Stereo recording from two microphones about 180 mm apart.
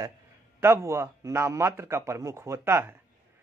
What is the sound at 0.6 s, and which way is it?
A man's voice, 15° right (ahead or behind).